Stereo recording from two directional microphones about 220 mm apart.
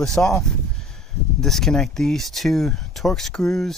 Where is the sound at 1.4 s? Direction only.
Centre (ahead or behind).